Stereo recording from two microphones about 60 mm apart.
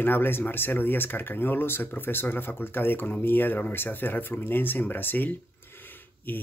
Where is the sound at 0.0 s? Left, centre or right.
Left.